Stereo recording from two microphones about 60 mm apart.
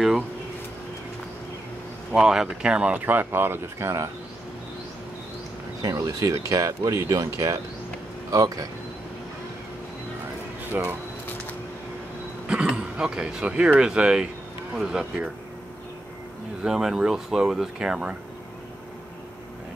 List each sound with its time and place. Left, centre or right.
2.1 s speech: centre
2.9 s speech: right
5.8 s speech: right
10.7 s speech: right
12.4 s speech: centre
16.6 s speech: centre